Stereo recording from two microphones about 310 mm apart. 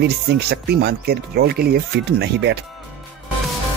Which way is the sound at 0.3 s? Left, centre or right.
Right.